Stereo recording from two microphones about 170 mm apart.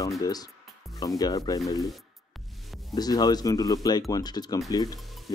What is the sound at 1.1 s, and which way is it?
Speech, 20° left (ahead or behind).